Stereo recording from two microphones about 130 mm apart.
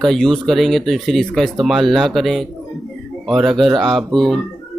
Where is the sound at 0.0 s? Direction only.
Centre (ahead or behind).